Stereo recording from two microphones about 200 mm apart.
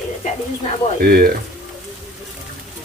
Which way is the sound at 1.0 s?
50° right (ahead or behind).